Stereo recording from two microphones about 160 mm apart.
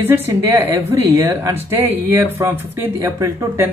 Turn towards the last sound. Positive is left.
turn(degrees=-20)  # may be behind; listen again after turning